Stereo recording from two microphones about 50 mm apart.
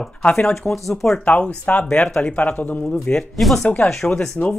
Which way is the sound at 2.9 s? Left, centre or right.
Centre.